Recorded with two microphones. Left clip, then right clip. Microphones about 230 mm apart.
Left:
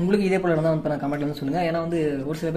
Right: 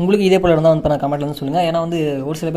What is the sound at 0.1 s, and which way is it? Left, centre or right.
A man's voice, right.